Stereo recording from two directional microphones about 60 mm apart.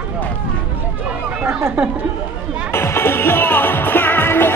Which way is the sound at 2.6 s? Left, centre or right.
Left.